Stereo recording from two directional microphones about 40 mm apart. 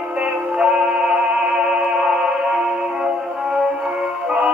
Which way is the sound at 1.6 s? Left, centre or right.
Centre.